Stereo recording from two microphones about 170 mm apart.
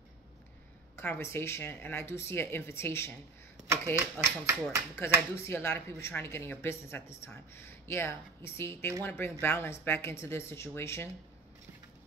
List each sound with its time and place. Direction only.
0.9 s speech: 15° left (ahead or behind)
3.9 s speech: 15° right (ahead or behind)
5.3 s speech: 15° left (ahead or behind)